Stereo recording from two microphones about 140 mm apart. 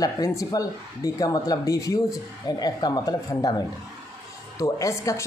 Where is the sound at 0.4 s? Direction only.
25° left (ahead or behind).